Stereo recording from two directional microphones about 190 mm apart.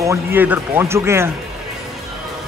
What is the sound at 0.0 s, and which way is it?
Speech, 15° right (ahead or behind).